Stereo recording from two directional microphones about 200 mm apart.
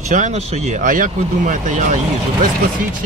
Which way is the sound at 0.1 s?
35° right (ahead or behind).